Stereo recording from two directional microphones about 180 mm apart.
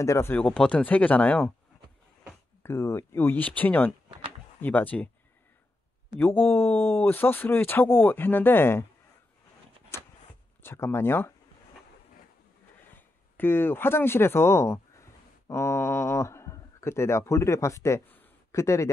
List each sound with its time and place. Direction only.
0.0 s speech: 15° left (ahead or behind)
2.6 s speech: 15° left (ahead or behind)
6.1 s speech: 10° left (ahead or behind)
9.9 s vehicle: 15° left (ahead or behind)
10.6 s speech: 15° left (ahead or behind)
12.9 s speech: 10° left (ahead or behind)